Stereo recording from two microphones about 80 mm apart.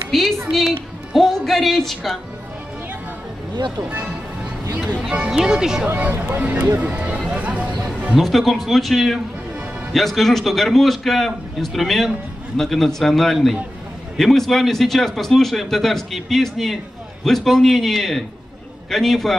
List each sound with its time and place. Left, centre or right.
0.1 s speech: centre
3.5 s speech: right
5.0 s speech: centre
5.9 s speech: centre
7.2 s music: centre
8.2 s speech: centre